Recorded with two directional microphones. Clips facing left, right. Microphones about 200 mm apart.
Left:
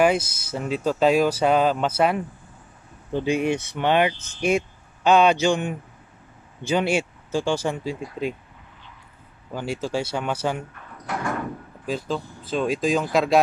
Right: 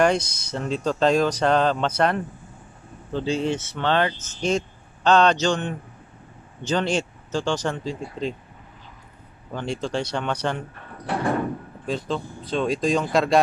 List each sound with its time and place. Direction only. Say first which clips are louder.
0.0 s speech: left 1 dB; 5° left (ahead or behind)
9.5 s speech: even; 5° left (ahead or behind)
10.7 s sliding door: right 3 dB; 30° right (ahead or behind)
11.8 s speech: even; centre (ahead or behind)